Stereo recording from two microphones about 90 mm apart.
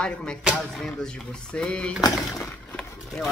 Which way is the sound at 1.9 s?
45° left (ahead or behind).